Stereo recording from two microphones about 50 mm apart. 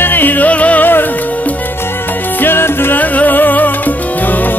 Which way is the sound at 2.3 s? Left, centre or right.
Left.